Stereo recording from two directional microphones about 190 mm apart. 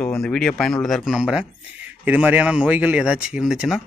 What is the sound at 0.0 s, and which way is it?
Speech, 5° left (ahead or behind).